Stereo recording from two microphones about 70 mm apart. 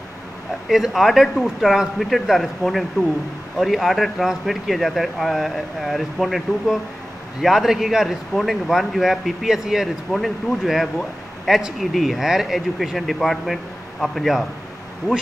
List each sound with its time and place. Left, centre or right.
0.7 s speech: centre